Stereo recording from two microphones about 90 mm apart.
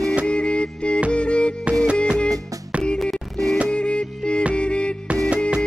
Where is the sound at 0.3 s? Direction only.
10° left (ahead or behind).